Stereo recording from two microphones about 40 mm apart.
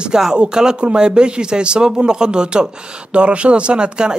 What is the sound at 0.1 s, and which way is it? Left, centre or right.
Speech, centre.